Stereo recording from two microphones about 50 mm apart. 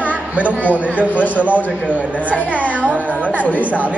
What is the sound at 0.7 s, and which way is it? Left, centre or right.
Speech, right.